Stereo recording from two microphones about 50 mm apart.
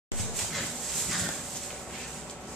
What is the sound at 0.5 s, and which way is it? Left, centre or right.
Dog, centre.